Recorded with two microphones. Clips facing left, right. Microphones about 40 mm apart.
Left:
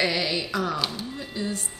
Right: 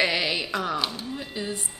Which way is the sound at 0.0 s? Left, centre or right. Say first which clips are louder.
Right 1 dB; centre.